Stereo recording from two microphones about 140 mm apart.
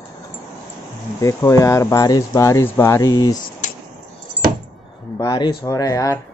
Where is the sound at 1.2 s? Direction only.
25° left (ahead or behind).